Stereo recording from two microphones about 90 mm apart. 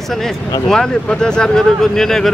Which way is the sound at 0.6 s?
5° left (ahead or behind).